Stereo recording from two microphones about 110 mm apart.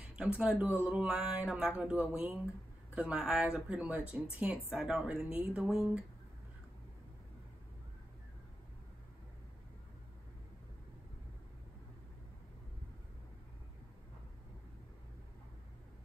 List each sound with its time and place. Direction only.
0.0 s speech: 10° right (ahead or behind)